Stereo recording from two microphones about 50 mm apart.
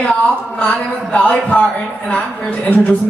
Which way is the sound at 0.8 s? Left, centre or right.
Left.